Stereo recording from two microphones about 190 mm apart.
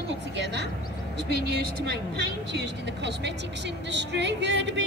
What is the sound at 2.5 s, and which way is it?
A man's voice, 65° right (ahead or behind).